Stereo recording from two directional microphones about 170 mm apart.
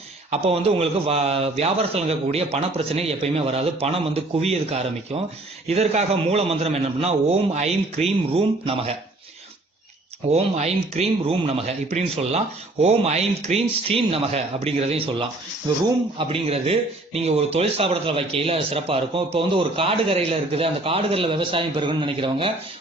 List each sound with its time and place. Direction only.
0.3 s a man's voice: 35° right (ahead or behind)
10.3 s a man's voice: 40° right (ahead or behind)